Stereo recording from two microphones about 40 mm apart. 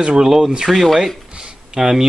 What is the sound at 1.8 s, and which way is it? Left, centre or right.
Speech, centre.